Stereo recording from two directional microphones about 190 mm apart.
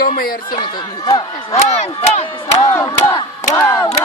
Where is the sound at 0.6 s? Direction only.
25° left (ahead or behind).